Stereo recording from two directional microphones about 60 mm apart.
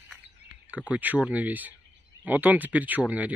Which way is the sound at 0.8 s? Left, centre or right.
Right.